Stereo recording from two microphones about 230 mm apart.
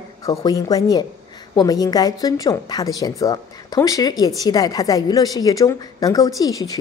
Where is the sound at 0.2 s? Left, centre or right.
Centre.